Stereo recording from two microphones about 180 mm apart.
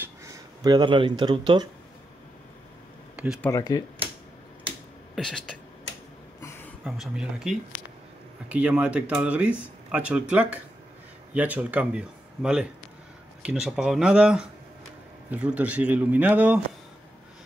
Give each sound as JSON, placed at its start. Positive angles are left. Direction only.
{"t": 0.7, "sound": "speech", "side_deg": -25}
{"t": 3.4, "sound": "speech", "side_deg": 20}
{"t": 5.1, "sound": "speech", "side_deg": 5}
{"t": 6.9, "sound": "speech", "side_deg": 0}